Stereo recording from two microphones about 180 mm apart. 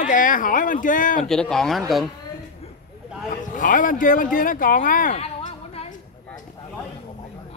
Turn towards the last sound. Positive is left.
turn(degrees=35)  # may be behind; listen again after turning